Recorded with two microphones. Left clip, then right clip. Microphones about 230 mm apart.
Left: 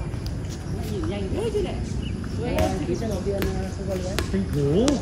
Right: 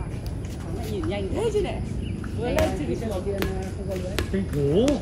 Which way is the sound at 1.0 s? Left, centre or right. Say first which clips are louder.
Right 2 dB; centre.